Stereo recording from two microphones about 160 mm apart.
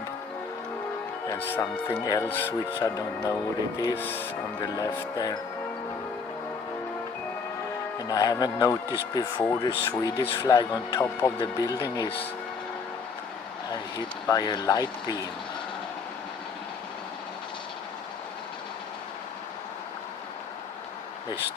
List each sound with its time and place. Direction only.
1.5 s speech: 20° left (ahead or behind)
4.7 s speech: 25° left (ahead or behind)
8.1 s speech: 20° left (ahead or behind)
14.3 s speech: 25° left (ahead or behind)